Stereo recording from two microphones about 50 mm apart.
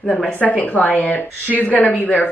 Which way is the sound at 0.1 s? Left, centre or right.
Left.